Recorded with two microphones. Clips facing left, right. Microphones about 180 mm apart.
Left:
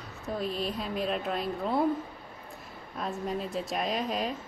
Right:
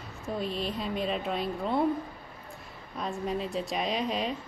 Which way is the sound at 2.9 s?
Centre (ahead or behind).